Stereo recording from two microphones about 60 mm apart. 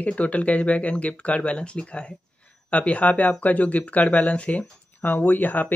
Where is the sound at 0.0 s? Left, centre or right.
Left.